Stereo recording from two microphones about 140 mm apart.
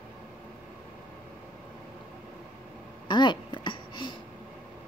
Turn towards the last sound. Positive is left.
turn(degrees=35)  # may be behind; listen again after turning